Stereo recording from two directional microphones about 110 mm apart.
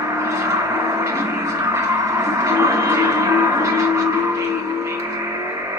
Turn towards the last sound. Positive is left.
turn(degrees=-25)  # may be behind; listen again after turning